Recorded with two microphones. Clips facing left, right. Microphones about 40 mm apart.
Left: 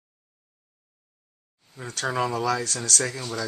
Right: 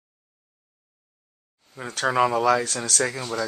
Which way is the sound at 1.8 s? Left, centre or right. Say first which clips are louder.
Right 5 dB; centre.